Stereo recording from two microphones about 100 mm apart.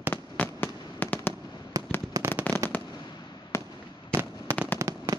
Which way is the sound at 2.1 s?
30° right (ahead or behind).